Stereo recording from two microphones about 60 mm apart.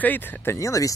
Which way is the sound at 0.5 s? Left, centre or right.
Left.